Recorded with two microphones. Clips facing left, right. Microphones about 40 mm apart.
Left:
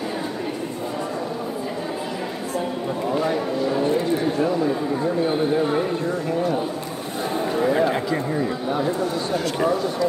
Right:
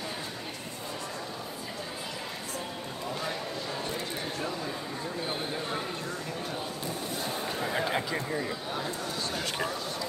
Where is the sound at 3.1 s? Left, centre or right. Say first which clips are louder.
Left 12 dB; left.